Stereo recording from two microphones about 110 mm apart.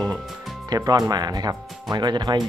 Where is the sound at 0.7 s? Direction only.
35° right (ahead or behind).